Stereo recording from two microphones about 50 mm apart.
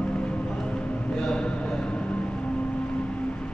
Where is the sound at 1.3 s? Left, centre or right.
Centre.